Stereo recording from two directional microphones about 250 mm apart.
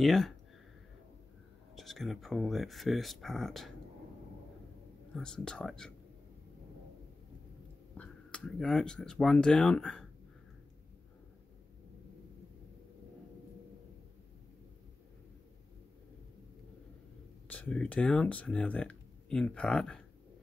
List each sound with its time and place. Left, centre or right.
0.0 s speech: centre
1.8 s speech: centre
5.1 s speech: centre
8.0 s speech: centre
17.5 s speech: centre